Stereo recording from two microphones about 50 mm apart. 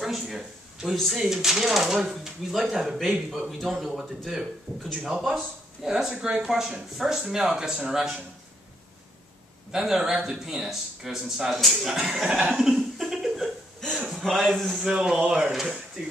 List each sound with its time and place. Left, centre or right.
0.0 s a sound: centre
1.1 s speech: centre
9.7 s speech: centre
12.5 s chuckle: centre
13.9 s a man's voice: centre
14.9 s speech: centre